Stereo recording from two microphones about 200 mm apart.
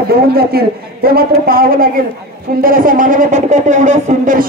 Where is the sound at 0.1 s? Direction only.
50° right (ahead or behind).